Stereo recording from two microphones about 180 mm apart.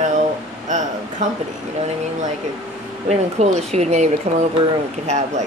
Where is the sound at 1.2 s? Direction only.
40° right (ahead or behind).